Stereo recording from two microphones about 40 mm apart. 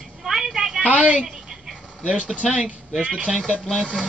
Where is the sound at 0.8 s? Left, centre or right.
Right.